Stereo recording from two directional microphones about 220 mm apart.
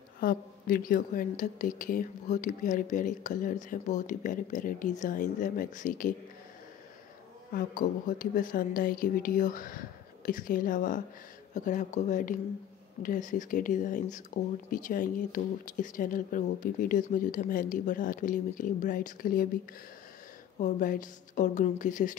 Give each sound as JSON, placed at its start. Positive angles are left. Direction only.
{"t": 0.2, "sound": "speech", "side_deg": 40}
{"t": 7.5, "sound": "speech", "side_deg": 40}
{"t": 20.5, "sound": "speech", "side_deg": 35}